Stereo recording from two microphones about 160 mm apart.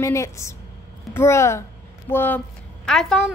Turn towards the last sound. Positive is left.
turn(degrees=5)  # may be behind; listen again after turning